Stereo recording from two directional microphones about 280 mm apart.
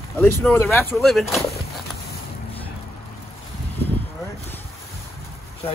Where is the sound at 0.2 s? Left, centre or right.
Centre.